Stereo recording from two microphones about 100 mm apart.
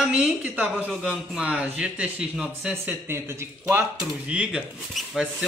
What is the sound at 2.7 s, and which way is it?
Speech, 20° right (ahead or behind).